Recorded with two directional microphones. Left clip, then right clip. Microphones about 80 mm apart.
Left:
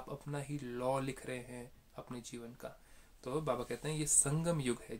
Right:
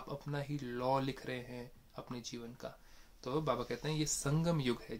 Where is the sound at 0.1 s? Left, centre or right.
Centre.